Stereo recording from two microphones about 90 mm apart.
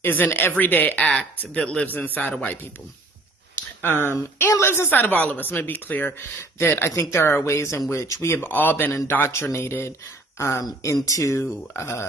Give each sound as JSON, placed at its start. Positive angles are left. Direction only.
{"t": 0.0, "sound": "speech", "side_deg": 20}
{"t": 3.8, "sound": "speech", "side_deg": 25}